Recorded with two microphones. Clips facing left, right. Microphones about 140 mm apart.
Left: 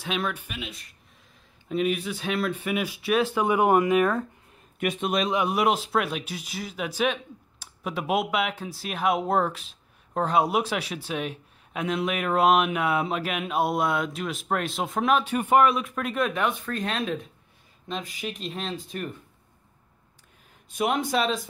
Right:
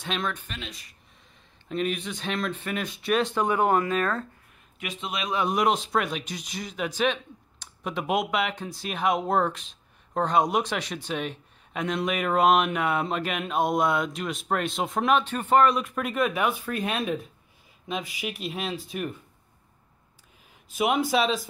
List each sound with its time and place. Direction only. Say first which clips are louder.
0.0 s speech: left 1 dB; 10° left (ahead or behind)
4.7 s a man's voice: left 8 dB; 55° left (ahead or behind)
5.3 s speech: right 3 dB; 10° left (ahead or behind); by 19.1 s 10° right (ahead or behind)
20.7 s speech: right 1 dB; 5° right (ahead or behind)